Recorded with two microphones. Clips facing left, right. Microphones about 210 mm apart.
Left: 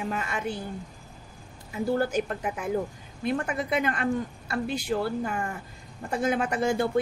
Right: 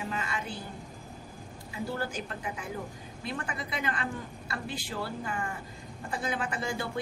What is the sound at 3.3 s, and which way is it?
A woman's voice, 50° left (ahead or behind).